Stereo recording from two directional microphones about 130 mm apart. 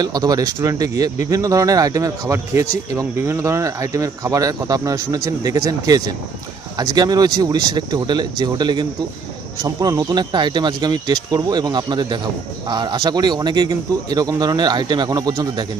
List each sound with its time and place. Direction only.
0.0 s speech: 30° right (ahead or behind)